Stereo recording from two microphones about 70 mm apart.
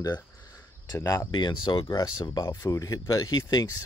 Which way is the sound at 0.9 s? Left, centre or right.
Left.